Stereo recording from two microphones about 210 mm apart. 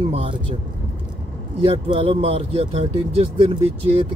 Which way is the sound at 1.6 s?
25° right (ahead or behind).